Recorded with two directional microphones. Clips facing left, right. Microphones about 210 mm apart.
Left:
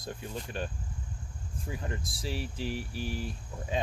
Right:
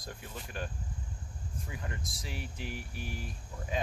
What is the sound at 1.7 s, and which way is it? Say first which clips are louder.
Speech: left 6 dB; 30° left (ahead or behind).